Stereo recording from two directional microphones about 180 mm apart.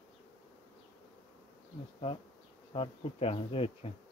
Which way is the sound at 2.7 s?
30° left (ahead or behind).